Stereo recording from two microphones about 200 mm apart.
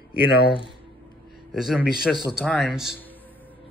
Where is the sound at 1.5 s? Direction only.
Centre (ahead or behind).